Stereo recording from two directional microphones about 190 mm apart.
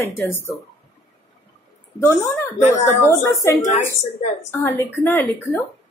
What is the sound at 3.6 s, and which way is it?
Speech, 40° left (ahead or behind).